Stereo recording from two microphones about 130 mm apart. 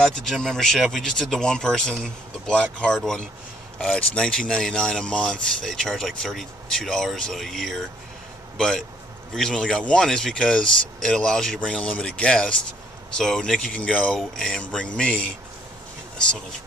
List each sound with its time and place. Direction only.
0.0 s speech: 5° left (ahead or behind)